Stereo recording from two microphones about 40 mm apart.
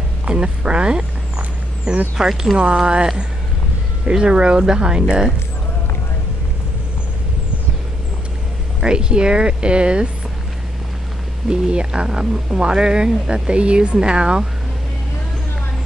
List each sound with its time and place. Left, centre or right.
0.3 s speech: right
4.1 s speech: right
8.8 s speech: right
11.4 s speech: centre